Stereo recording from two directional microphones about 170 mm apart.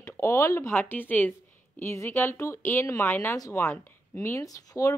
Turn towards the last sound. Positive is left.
turn(degrees=20)  # may be behind; listen again after turning